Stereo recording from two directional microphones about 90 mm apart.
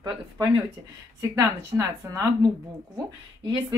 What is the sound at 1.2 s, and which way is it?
A woman's voice, 35° right (ahead or behind).